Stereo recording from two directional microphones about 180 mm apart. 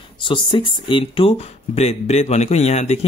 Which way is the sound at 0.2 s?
30° left (ahead or behind).